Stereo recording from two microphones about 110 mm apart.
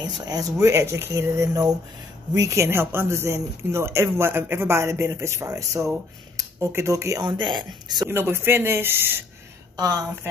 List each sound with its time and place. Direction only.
0.0 s speech: 35° right (ahead or behind)
7.2 s speech: 45° right (ahead or behind)
8.1 s speech: 20° right (ahead or behind)
9.8 s speech: 35° right (ahead or behind)